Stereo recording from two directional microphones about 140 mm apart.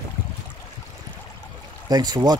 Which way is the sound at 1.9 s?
30° right (ahead or behind).